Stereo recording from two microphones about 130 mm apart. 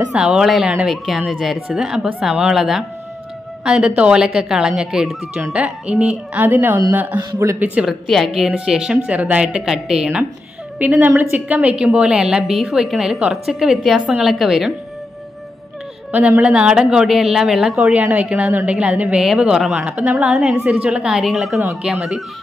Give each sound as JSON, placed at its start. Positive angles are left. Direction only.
{"t": 0.1, "sound": "a woman's voice", "side_deg": -5}
{"t": 7.2, "sound": "speech", "side_deg": -25}
{"t": 8.1, "sound": "a woman's voice", "side_deg": 0}
{"t": 16.1, "sound": "a woman's voice", "side_deg": -10}